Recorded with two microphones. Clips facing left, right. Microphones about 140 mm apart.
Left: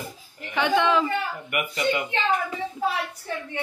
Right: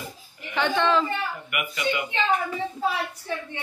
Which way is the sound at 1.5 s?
40° left (ahead or behind).